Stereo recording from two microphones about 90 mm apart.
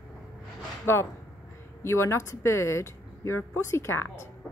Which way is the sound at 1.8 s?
30° left (ahead or behind).